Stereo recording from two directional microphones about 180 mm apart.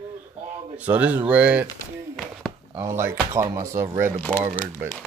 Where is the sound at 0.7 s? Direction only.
10° right (ahead or behind).